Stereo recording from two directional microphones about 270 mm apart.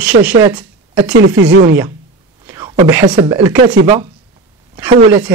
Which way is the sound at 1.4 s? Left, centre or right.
Right.